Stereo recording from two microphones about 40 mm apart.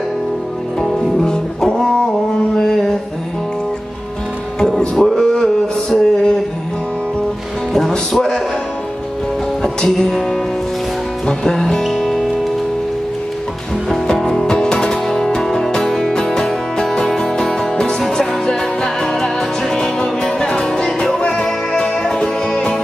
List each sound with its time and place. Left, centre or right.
0.7 s music: centre
2.5 s mantra: centre
4.6 s music: centre
4.9 s a sound: centre
8.1 s music: centre
9.8 s music: centre
14.0 s music: centre